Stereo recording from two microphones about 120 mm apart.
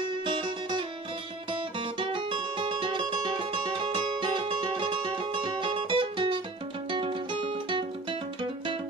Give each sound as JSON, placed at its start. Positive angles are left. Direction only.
{"t": 0.2, "sound": "music", "side_deg": -40}